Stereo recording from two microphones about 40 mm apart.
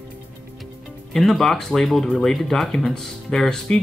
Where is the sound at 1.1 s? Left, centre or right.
Centre.